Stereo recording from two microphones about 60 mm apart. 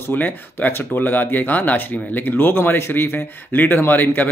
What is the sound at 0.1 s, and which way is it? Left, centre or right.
Speech, left.